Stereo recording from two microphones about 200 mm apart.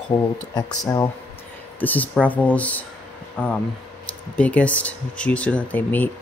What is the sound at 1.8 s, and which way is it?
Speech, 10° left (ahead or behind).